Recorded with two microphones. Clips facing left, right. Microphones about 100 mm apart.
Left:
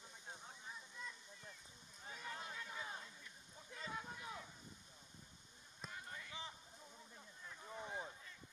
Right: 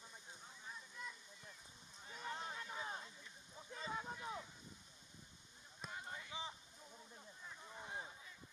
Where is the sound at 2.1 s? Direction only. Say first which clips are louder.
Right 3 dB; 35° right (ahead or behind).